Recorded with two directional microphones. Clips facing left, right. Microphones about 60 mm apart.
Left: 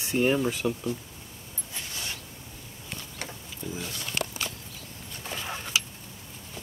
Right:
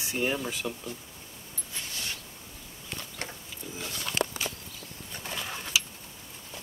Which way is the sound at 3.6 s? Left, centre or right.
Centre.